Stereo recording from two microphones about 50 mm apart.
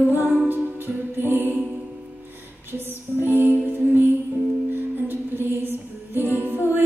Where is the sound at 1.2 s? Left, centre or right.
Right.